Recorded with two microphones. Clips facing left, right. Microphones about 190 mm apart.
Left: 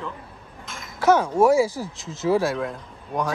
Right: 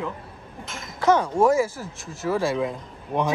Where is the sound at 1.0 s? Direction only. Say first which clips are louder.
Left 1 dB; 5° left (ahead or behind).